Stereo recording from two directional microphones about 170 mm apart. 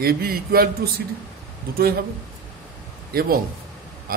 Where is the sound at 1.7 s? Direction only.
65° right (ahead or behind).